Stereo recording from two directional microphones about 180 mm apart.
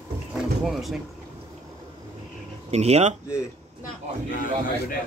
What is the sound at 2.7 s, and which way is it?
Speech, 35° right (ahead or behind).